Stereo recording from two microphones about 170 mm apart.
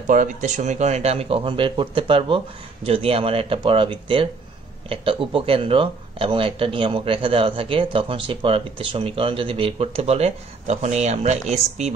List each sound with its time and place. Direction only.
0.0 s speech: 50° right (ahead or behind)